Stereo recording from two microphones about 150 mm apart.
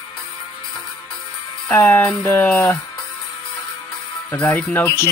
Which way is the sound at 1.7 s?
15° left (ahead or behind).